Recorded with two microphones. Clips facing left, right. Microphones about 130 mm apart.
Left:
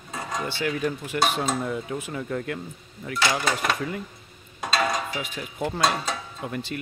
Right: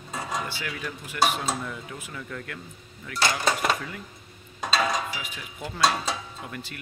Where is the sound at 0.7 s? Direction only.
40° left (ahead or behind).